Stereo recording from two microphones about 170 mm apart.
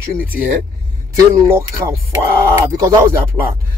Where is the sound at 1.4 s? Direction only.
15° right (ahead or behind).